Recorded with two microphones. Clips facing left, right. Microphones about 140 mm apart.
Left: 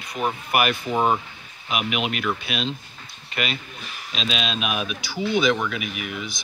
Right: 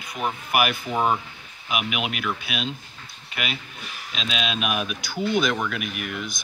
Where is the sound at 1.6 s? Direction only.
5° right (ahead or behind).